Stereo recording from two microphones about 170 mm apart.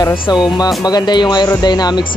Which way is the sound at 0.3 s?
25° left (ahead or behind).